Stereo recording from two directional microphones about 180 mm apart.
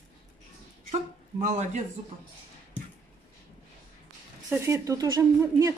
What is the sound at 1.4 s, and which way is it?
Speech, 40° right (ahead or behind).